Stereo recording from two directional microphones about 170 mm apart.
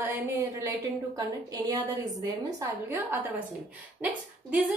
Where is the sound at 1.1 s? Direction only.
20° right (ahead or behind).